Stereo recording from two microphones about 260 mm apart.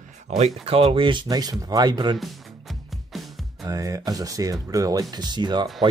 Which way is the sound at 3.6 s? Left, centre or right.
Centre.